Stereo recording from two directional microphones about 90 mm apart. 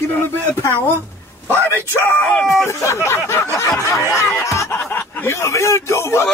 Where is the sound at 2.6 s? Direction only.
30° left (ahead or behind).